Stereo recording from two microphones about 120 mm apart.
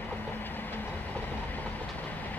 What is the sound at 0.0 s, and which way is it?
Train, 15° left (ahead or behind).